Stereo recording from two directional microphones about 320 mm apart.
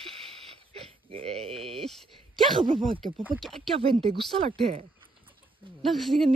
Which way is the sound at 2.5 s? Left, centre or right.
Centre.